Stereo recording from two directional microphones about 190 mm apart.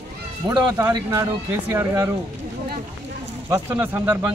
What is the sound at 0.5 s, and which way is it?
Speech, 20° right (ahead or behind).